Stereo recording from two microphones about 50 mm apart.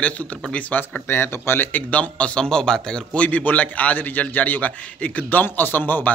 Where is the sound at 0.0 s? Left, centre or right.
Left.